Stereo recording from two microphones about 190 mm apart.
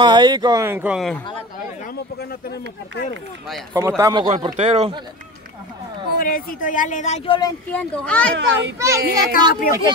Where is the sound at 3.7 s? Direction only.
15° right (ahead or behind).